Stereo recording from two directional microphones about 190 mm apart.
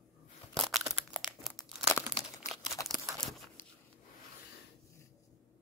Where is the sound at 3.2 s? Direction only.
Centre (ahead or behind).